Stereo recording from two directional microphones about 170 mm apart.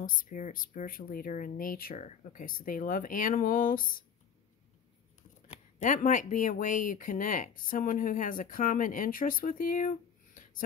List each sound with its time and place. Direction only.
0.0 s speech: 50° left (ahead or behind)
5.5 s speech: 50° left (ahead or behind)